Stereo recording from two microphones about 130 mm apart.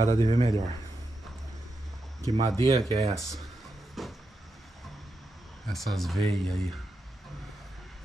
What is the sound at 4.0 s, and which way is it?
Vehicle, centre (ahead or behind).